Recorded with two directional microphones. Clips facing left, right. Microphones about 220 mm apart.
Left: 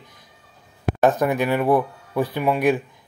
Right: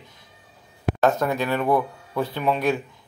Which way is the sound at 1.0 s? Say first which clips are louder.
Left 3 dB; 15° left (ahead or behind).